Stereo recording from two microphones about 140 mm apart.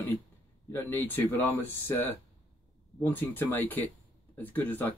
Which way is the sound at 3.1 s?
15° left (ahead or behind).